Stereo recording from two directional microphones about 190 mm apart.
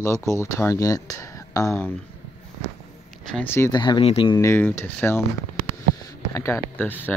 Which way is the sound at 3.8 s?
25° left (ahead or behind).